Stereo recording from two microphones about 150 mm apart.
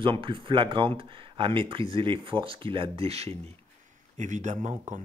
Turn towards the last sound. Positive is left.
turn(degrees=-55)  # may be behind; listen again after turning